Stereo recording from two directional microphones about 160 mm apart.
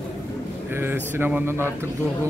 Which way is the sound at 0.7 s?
15° right (ahead or behind).